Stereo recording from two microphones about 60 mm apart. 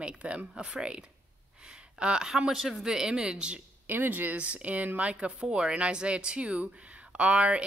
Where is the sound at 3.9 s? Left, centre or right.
Right.